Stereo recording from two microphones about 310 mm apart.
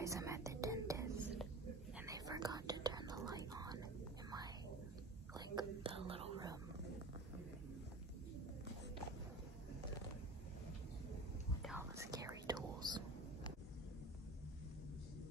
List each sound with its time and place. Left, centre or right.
0.0 s whispering: centre
5.3 s whispering: centre
11.6 s whispering: centre